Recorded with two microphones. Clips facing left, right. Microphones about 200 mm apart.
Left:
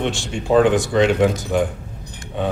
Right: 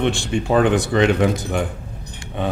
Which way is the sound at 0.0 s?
55° right (ahead or behind).